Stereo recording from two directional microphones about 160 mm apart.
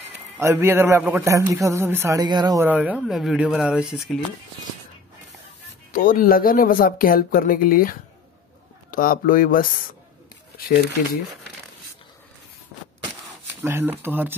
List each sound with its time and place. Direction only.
0.4 s a man's voice: 15° right (ahead or behind)
2.6 s a man's voice: 10° right (ahead or behind)
5.9 s speech: 60° left (ahead or behind)
13.6 s a man's voice: 15° right (ahead or behind)